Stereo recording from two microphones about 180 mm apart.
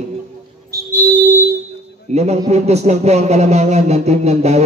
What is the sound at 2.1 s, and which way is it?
Speech, 40° right (ahead or behind).